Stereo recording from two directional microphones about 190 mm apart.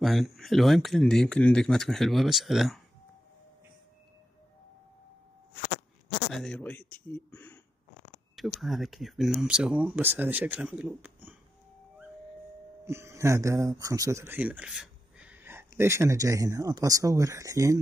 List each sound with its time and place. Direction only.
0.0 s speech: centre (ahead or behind)
6.3 s speech: 5° left (ahead or behind)
12.8 s speech: 15° right (ahead or behind)